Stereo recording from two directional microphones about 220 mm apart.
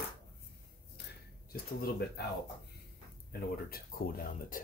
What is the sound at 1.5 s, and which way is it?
Speech, 45° left (ahead or behind).